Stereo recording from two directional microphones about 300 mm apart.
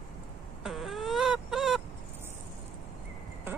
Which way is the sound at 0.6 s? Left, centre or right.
Centre.